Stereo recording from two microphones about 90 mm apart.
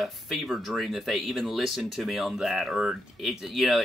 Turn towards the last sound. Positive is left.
turn(degrees=0)  # may be behind; listen again after turning